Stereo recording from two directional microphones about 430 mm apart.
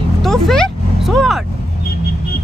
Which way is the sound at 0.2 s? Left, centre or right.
Centre.